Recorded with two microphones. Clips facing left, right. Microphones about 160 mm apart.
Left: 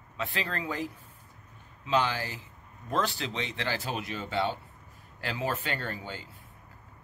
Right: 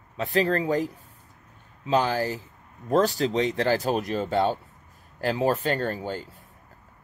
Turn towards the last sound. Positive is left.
turn(degrees=-40)  # may be behind; listen again after turning